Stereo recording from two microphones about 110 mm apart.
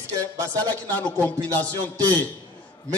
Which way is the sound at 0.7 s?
15° left (ahead or behind).